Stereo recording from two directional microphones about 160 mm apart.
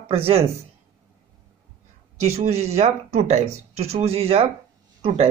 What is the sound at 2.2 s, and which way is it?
Speech, 40° right (ahead or behind).